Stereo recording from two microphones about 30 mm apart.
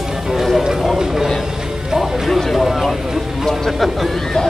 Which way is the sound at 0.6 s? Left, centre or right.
Centre.